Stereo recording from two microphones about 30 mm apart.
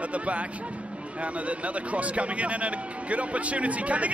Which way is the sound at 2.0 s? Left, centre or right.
Right.